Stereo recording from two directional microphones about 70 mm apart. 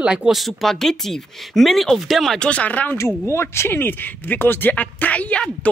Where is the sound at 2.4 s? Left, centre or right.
Centre.